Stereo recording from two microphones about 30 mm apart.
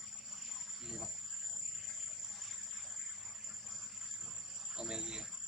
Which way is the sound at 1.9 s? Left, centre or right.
Centre.